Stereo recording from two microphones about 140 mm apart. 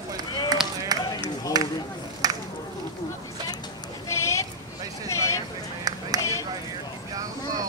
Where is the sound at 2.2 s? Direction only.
25° right (ahead or behind).